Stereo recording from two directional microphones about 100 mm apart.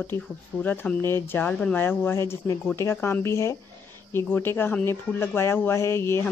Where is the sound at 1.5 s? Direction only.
10° left (ahead or behind).